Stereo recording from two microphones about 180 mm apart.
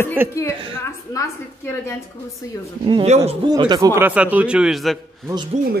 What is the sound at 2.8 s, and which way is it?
Speech, 25° right (ahead or behind).